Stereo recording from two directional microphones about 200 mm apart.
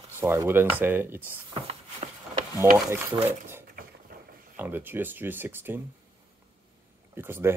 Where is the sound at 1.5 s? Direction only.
30° right (ahead or behind).